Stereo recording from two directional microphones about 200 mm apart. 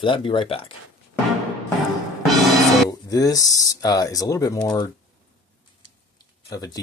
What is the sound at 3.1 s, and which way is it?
Speech, 15° left (ahead or behind).